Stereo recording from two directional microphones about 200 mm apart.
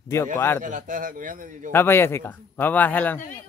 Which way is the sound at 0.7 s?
40° right (ahead or behind).